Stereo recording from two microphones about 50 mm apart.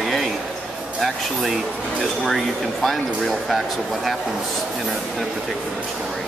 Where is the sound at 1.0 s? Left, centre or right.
Centre.